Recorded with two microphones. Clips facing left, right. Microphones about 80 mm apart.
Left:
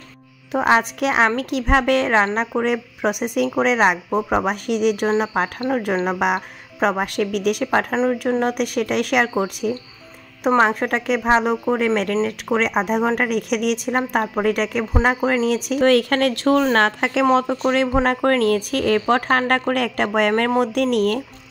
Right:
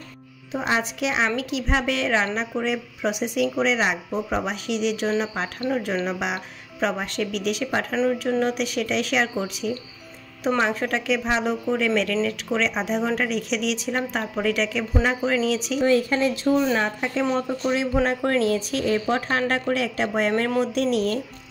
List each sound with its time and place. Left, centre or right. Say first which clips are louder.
0.5 s speech: left 7 dB; left
7.9 s speech: left 3 dB; left
12.4 s speech: left 5 dB; left
15.8 s a woman's voice: left 4 dB; left
18.0 s speech: left 4 dB; left